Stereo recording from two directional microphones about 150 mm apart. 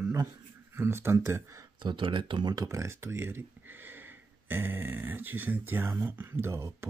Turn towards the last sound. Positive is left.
turn(degrees=-15)  # may be behind; listen again after turning